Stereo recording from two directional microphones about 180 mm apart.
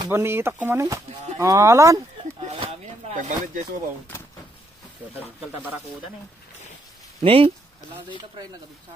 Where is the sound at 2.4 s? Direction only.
35° right (ahead or behind).